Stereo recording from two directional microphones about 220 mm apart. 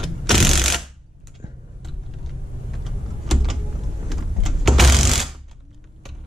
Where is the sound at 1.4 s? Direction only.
20° right (ahead or behind).